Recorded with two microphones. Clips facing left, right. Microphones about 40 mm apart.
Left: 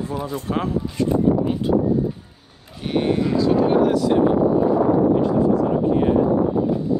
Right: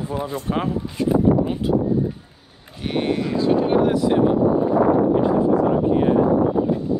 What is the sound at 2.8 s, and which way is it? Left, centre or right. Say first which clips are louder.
Speech: left 2 dB; centre.